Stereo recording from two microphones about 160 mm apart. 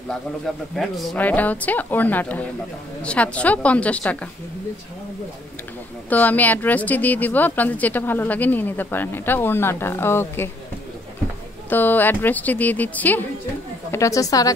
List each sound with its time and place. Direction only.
0.7 s speech: 5° left (ahead or behind)
6.0 s speech: 10° left (ahead or behind)
11.7 s a woman's voice: 10° left (ahead or behind)